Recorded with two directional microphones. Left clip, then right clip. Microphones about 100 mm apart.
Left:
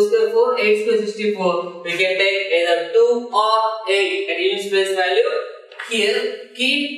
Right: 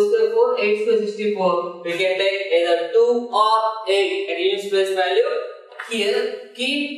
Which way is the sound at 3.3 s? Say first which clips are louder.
Left 1 dB; 10° right (ahead or behind).